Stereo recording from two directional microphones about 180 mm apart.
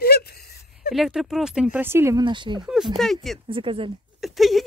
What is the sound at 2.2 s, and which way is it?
Speech, 25° right (ahead or behind).